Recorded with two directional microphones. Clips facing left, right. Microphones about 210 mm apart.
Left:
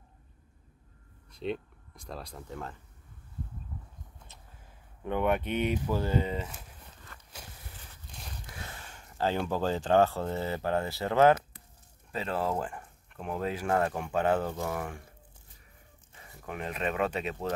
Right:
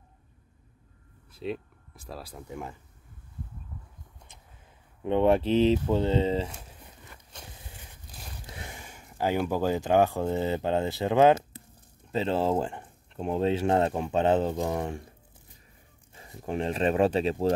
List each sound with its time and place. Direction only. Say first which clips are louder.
1.3 s speech: even; 5° right (ahead or behind)
5.0 s speech: right 6 dB; 25° right (ahead or behind)
6.9 s a sound: right 2 dB; 15° right (ahead or behind)
8.5 s speech: right 2 dB; 15° right (ahead or behind)
16.2 s speech: right 8 dB; 30° right (ahead or behind)